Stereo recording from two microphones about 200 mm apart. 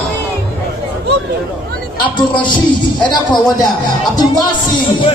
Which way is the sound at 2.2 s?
25° left (ahead or behind).